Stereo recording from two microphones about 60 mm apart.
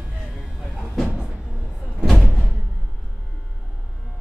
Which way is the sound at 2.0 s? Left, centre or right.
Centre.